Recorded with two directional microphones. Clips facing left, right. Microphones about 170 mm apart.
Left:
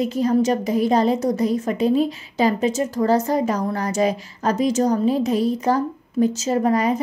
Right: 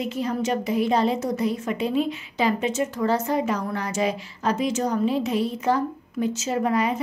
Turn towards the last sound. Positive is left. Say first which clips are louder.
# left 4 dB
turn(degrees=40)  # may be behind; listen again after turning